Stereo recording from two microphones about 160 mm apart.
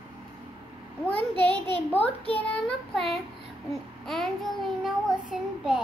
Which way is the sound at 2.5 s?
Centre (ahead or behind).